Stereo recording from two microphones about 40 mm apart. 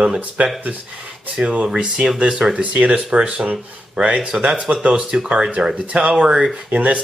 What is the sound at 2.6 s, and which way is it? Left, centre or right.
Speech, right.